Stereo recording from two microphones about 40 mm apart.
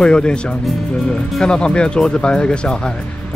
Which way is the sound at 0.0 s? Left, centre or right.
Left.